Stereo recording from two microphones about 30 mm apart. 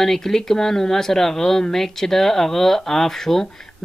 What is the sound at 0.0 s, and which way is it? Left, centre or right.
Speech, centre.